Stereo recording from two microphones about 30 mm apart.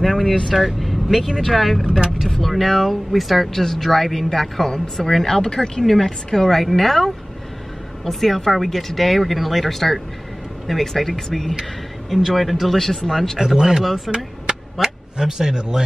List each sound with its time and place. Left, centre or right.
0.0 s speech: centre
3.5 s a woman's voice: centre
12.3 s speech: centre
12.7 s a woman's voice: centre
13.6 s speech: centre
13.8 s speech: centre
14.1 s a sound: right